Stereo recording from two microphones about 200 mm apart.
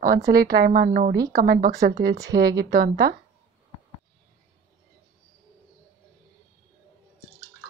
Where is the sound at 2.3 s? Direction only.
55° right (ahead or behind).